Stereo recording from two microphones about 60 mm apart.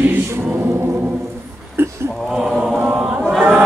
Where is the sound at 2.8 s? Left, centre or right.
Right.